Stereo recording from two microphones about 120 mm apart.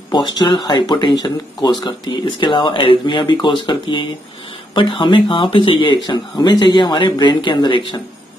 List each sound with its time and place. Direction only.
0.1 s speech: 40° left (ahead or behind)